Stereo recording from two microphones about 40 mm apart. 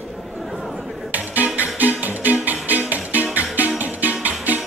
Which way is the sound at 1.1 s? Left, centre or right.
Right.